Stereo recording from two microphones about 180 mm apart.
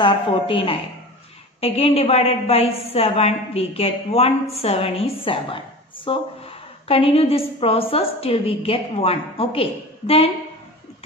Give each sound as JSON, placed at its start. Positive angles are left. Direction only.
{"t": 0.0, "sound": "a woman's voice", "side_deg": 30}